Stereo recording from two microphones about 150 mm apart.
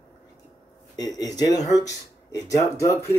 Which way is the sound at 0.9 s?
25° left (ahead or behind).